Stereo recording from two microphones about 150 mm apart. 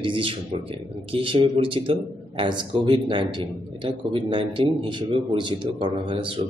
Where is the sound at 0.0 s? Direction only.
35° right (ahead or behind).